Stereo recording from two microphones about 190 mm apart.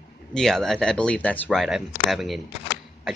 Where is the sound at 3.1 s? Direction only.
Centre (ahead or behind).